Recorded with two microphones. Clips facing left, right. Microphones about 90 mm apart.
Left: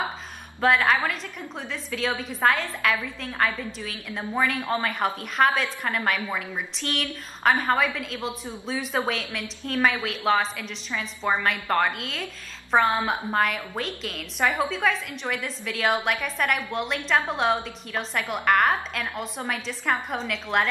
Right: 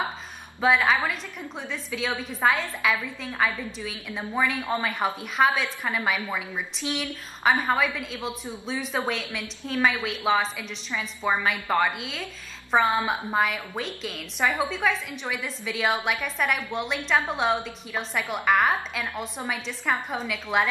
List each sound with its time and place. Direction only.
0.6 s a woman's voice: centre (ahead or behind)